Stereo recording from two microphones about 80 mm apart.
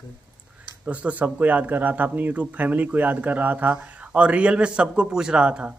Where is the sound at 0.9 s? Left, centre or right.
Centre.